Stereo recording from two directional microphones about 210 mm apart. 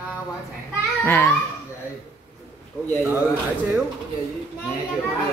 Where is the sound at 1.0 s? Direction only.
10° left (ahead or behind).